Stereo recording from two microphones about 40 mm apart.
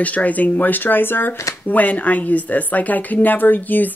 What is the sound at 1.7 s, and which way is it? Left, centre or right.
Speech, left.